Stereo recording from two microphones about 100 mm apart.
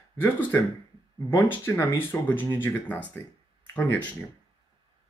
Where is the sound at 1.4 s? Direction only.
25° left (ahead or behind).